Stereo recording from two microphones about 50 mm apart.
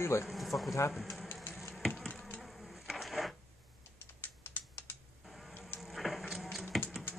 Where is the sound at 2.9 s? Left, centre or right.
Centre.